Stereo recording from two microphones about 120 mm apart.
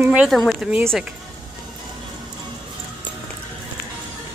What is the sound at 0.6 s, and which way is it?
Speech, 10° right (ahead or behind).